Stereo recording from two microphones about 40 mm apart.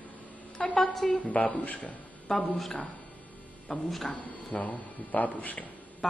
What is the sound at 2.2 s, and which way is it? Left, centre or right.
Speech, centre.